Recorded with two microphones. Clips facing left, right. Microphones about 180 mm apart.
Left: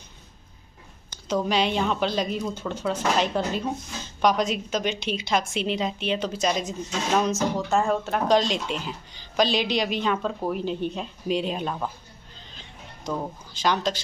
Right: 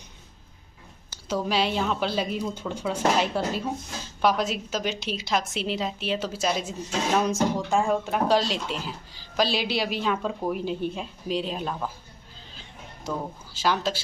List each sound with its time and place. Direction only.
1.1 s a woman's voice: 5° right (ahead or behind)
13.0 s speech: 10° right (ahead or behind)